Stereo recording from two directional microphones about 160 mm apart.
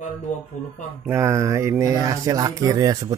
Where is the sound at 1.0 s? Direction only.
15° right (ahead or behind).